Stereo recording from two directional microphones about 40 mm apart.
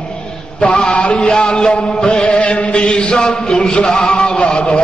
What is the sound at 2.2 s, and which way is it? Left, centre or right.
Chant, left.